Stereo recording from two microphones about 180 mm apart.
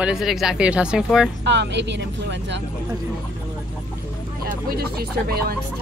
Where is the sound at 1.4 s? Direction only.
75° right (ahead or behind).